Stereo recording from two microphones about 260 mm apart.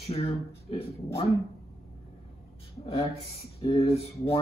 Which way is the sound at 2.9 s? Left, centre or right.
Left.